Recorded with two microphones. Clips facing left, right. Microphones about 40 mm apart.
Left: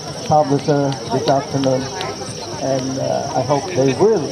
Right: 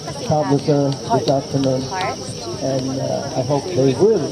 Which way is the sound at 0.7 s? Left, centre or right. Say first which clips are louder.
Right 2 dB; left.